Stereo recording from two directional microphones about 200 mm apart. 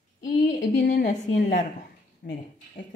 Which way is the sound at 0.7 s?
45° left (ahead or behind).